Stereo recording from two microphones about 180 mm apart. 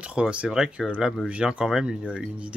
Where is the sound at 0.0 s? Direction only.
5° right (ahead or behind).